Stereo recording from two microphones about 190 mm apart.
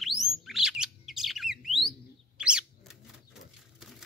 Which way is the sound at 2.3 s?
5° right (ahead or behind).